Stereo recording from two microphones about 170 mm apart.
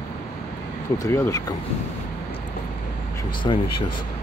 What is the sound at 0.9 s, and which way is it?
Speech, 20° left (ahead or behind).